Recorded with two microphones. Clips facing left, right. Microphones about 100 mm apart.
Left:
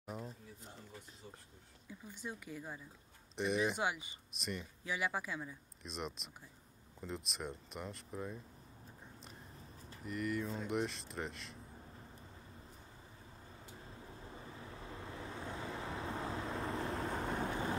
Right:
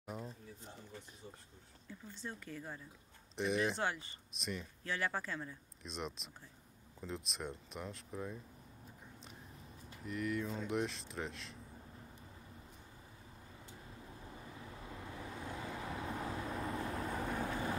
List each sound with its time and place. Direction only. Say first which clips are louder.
0.0 s a sound: even; centre (ahead or behind)
1.9 s speech: left 1 dB; 10° left (ahead or behind)
3.8 s speech: left 1 dB; 10° left (ahead or behind)
4.3 s speech: even; centre (ahead or behind)
10.0 s speech: even; centre (ahead or behind)
15.0 s vehicle: even; 30° left (ahead or behind)